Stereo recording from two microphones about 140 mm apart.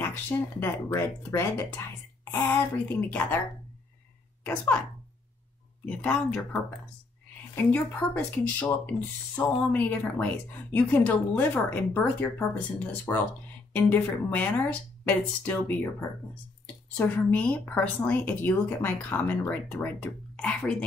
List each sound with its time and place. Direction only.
0.0 s speech: 15° left (ahead or behind)
4.4 s speech: 10° left (ahead or behind)
5.9 s speech: 10° left (ahead or behind)